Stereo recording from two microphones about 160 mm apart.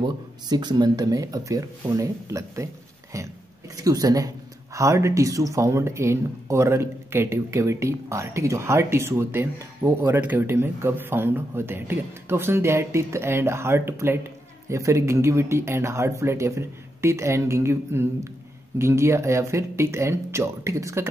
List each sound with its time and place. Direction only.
0.0 s speech: 25° right (ahead or behind)